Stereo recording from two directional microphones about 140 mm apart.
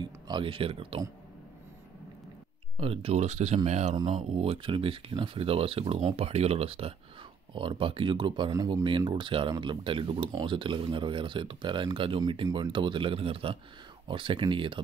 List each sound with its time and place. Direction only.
0.0 s speech: 35° right (ahead or behind)
2.8 s speech: 45° right (ahead or behind)
3.9 s speech: 35° right (ahead or behind)
4.2 s speech: 45° right (ahead or behind)
8.5 s speech: 25° right (ahead or behind)
8.8 s speech: 35° right (ahead or behind)